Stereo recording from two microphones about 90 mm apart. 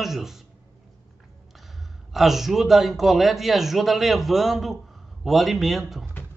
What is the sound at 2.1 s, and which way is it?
Speech, 5° right (ahead or behind).